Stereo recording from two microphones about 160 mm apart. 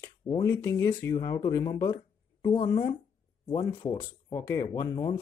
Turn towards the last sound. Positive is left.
turn(degrees=25)  # may be behind; listen again after turning